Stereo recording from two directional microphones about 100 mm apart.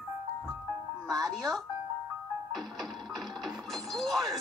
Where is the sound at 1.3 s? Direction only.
Centre (ahead or behind).